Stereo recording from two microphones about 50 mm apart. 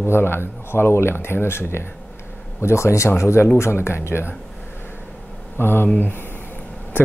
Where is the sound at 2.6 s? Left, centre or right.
Left.